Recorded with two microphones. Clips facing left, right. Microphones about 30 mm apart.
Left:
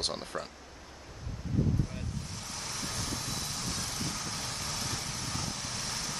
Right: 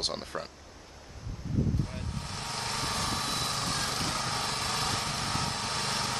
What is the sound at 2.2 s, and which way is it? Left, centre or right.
Lawn mower, right.